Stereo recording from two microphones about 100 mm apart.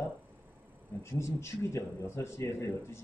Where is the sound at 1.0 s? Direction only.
30° left (ahead or behind).